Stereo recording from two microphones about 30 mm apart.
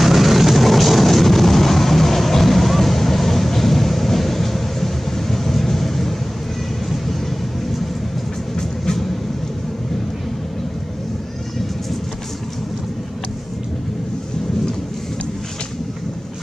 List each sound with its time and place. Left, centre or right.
0.0 s vehicle: centre